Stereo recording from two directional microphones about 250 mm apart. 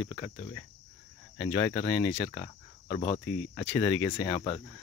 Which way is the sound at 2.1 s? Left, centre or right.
Centre.